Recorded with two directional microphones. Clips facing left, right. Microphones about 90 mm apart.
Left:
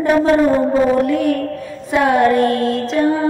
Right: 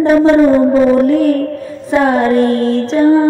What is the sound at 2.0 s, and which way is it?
Music, 30° right (ahead or behind).